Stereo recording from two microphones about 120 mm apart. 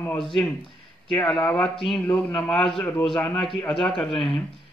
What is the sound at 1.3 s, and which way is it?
Speech, 10° left (ahead or behind).